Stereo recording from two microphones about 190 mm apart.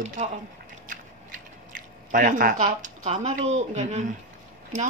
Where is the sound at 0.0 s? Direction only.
40° right (ahead or behind).